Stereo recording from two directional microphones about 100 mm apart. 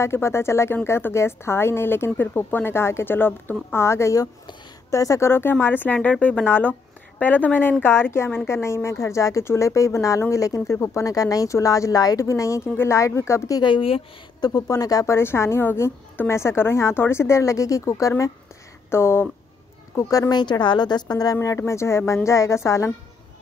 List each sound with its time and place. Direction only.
0.0 s a woman's voice: 25° left (ahead or behind)
13.6 s speech: 55° left (ahead or behind)
14.4 s a woman's voice: 40° left (ahead or behind)
20.0 s speech: 35° left (ahead or behind)
21.4 s a woman's voice: 30° left (ahead or behind)